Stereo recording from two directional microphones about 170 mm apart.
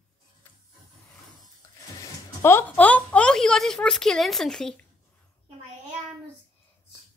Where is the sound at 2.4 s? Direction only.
10° left (ahead or behind).